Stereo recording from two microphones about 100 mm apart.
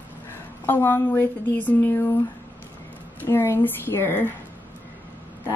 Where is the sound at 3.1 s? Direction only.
20° left (ahead or behind).